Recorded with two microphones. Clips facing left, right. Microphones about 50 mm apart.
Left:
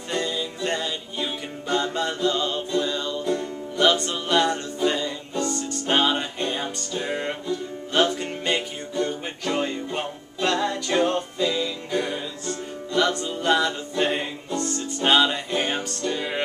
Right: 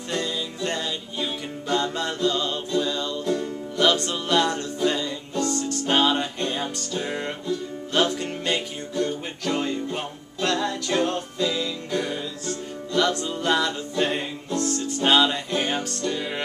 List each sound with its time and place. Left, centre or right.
0.1 s music: centre